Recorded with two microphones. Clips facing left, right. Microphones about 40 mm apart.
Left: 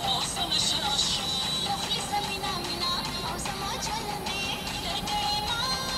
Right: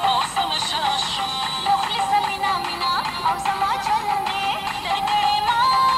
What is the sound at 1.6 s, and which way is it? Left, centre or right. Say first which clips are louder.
Music: right 11 dB; right.